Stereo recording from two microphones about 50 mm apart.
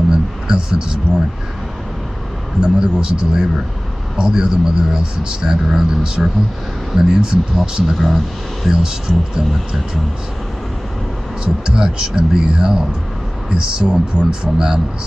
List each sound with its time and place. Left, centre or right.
0.1 s a sound: centre
2.6 s a man's voice: centre
11.4 s a man's voice: centre